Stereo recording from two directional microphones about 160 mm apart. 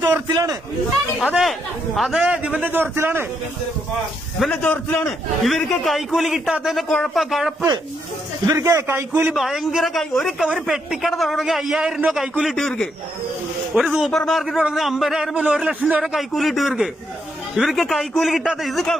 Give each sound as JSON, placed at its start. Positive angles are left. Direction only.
{"t": 0.3, "sound": "a man's voice", "side_deg": -25}
{"t": 1.3, "sound": "a man's voice", "side_deg": 0}
{"t": 4.4, "sound": "a man's voice", "side_deg": 10}
{"t": 8.5, "sound": "a man's voice", "side_deg": -20}
{"t": 9.3, "sound": "a man's voice", "side_deg": 0}